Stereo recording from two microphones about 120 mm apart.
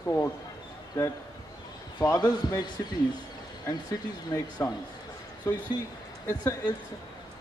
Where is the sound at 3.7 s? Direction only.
35° left (ahead or behind).